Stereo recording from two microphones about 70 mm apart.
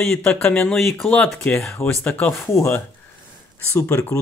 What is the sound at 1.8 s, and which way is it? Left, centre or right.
Speech, left.